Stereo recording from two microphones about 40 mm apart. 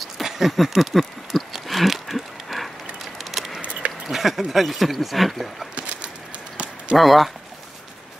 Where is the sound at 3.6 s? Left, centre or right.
Right.